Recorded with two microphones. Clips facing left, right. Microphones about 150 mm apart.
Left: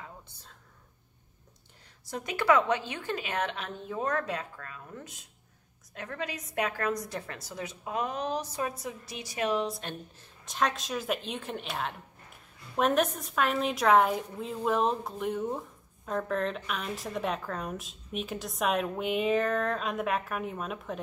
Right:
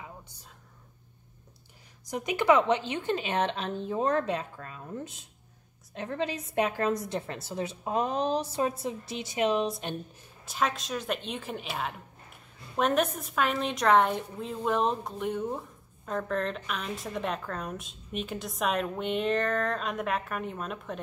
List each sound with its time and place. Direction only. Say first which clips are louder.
0.0 s whispering: right 1 dB; 10° right (ahead or behind)
2.0 s a woman's voice: right 2 dB; 15° right (ahead or behind)
10.4 s a woman's voice: even; 5° right (ahead or behind)